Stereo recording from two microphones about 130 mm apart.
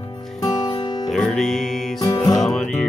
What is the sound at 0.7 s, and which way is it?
Music, 35° left (ahead or behind).